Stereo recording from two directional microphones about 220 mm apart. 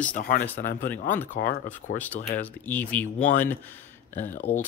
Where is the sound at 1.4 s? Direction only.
45° left (ahead or behind).